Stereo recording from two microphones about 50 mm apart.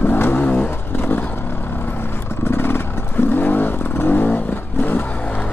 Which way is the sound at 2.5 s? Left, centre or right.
Left.